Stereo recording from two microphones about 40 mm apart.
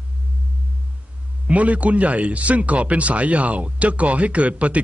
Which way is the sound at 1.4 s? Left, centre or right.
Right.